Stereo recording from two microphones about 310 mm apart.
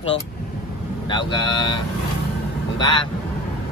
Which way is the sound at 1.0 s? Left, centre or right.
Centre.